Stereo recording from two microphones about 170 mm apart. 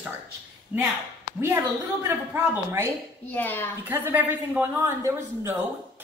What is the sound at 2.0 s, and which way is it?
Speech, 15° right (ahead or behind).